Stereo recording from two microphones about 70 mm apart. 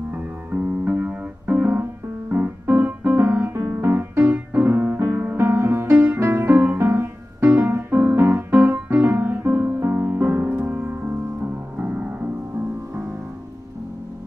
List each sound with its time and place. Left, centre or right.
0.1 s music: right
2.3 s piano: right
5.2 s music: right